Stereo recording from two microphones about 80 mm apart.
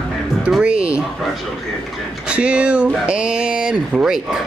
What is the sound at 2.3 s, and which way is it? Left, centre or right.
Speech, centre.